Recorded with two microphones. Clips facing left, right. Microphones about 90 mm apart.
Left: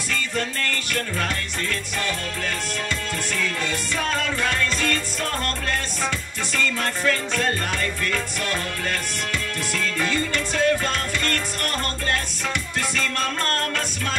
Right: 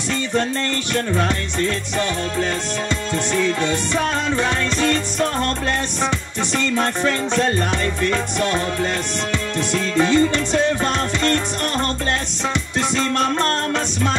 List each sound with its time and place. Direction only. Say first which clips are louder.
0.1 s music: right 6 dB; 25° right (ahead or behind)
3.3 s music: right 8 dB; 25° right (ahead or behind)
9.7 s music: right 8 dB; 25° right (ahead or behind)
12.9 s music: right 8 dB; 25° right (ahead or behind)